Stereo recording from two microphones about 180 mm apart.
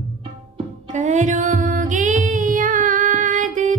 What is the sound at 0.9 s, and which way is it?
Music, 45° right (ahead or behind).